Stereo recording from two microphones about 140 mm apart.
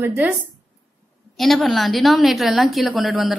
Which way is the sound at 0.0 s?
15° right (ahead or behind).